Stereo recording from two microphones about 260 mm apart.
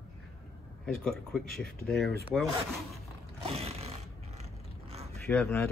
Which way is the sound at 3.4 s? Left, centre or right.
Right.